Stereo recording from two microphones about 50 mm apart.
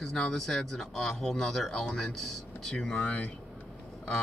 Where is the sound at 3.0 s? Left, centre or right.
Left.